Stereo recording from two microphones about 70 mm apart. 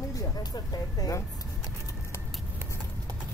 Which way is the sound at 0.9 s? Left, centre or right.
Left.